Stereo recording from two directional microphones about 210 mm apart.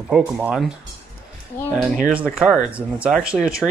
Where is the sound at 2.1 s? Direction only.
5° right (ahead or behind).